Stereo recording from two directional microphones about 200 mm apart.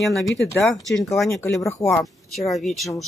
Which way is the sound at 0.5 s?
10° left (ahead or behind).